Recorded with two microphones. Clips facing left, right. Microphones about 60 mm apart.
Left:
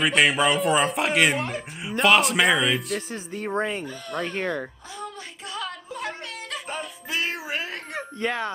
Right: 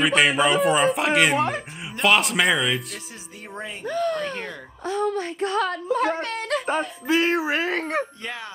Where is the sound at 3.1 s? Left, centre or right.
Left.